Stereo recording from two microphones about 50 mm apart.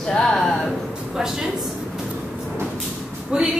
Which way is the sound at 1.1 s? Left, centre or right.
Centre.